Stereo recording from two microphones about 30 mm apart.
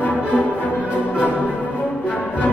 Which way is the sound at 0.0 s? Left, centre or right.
Left.